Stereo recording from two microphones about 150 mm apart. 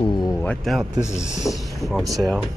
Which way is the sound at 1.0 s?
20° left (ahead or behind).